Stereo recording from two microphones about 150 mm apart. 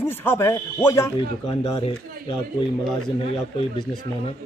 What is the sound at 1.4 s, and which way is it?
Speech, 40° left (ahead or behind).